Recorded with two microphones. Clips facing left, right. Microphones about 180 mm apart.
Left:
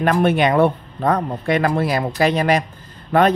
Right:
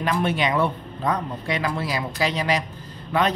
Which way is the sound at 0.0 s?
55° left (ahead or behind).